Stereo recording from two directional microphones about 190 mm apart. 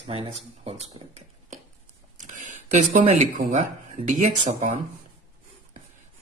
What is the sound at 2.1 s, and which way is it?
Speech, 40° right (ahead or behind).